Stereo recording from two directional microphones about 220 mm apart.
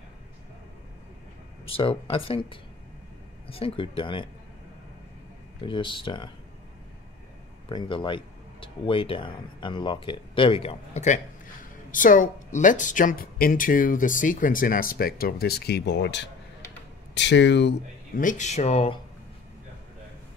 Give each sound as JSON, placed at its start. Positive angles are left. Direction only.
{"t": 1.7, "sound": "speech", "side_deg": 25}
{"t": 5.7, "sound": "speech", "side_deg": 20}
{"t": 7.7, "sound": "speech", "side_deg": 20}
{"t": 18.2, "sound": "speech", "side_deg": 30}